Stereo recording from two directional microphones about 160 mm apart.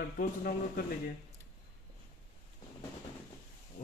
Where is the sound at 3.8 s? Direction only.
65° left (ahead or behind).